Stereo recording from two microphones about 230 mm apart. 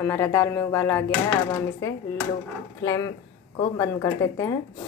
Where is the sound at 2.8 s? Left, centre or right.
Centre.